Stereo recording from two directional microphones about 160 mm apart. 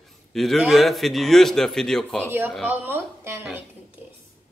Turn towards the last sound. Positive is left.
turn(degrees=-10)  # may be behind; listen again after turning